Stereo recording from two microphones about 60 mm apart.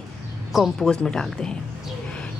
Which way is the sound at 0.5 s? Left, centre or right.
Centre.